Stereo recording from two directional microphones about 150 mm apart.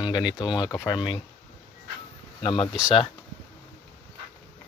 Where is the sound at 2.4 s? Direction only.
35° left (ahead or behind).